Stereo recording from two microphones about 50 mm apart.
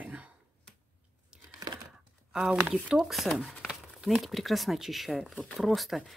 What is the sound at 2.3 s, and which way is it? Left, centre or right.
Speech, centre.